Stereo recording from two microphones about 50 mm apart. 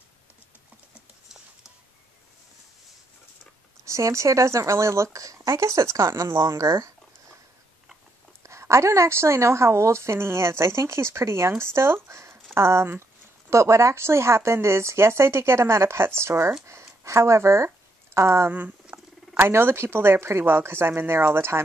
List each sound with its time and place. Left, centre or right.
3.8 s speech: right
8.5 s a woman's voice: right
13.5 s speech: right
16.6 s speech: right
18.1 s speech: right
18.9 s wild animals: right
19.4 s speech: right